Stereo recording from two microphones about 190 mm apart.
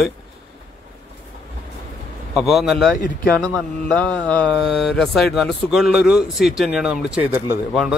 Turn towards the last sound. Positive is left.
turn(degrees=-10)  # may be behind; listen again after turning